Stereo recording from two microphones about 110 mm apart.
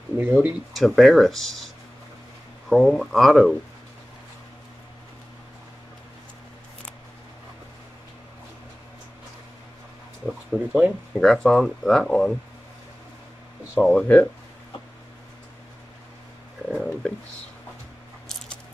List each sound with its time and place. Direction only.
0.2 s speech: 15° right (ahead or behind)
0.7 s speech: centre (ahead or behind)
2.7 s speech: centre (ahead or behind)
10.5 s speech: 10° right (ahead or behind)
11.1 s speech: 5° left (ahead or behind)
13.7 s speech: 10° left (ahead or behind)
16.7 s a sound: 5° left (ahead or behind)